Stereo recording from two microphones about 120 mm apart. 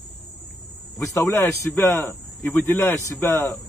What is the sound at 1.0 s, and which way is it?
Speech, 25° left (ahead or behind).